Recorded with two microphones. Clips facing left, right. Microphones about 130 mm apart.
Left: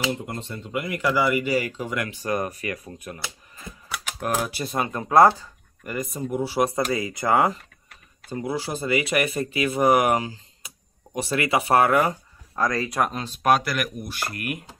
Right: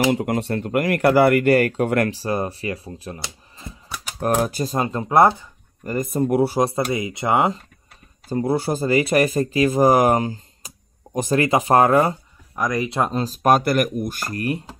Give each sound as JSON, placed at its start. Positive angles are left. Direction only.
{"t": 0.1, "sound": "speech", "side_deg": -80}
{"t": 2.0, "sound": "speech", "side_deg": -30}
{"t": 5.1, "sound": "speech", "side_deg": -20}
{"t": 5.8, "sound": "speech", "side_deg": -35}
{"t": 6.1, "sound": "speech", "side_deg": -60}
{"t": 6.6, "sound": "speech", "side_deg": -25}
{"t": 8.3, "sound": "speech", "side_deg": -45}
{"t": 9.1, "sound": "speech", "side_deg": -35}
{"t": 12.5, "sound": "speech", "side_deg": -20}